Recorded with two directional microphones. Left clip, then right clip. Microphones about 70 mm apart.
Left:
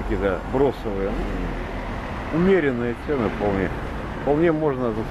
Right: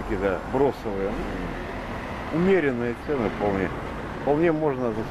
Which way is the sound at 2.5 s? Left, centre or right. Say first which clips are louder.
Left 2 dB; centre.